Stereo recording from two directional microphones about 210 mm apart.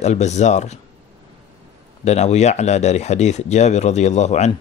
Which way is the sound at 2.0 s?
30° left (ahead or behind).